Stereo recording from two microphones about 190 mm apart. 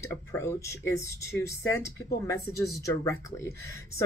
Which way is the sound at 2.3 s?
15° left (ahead or behind).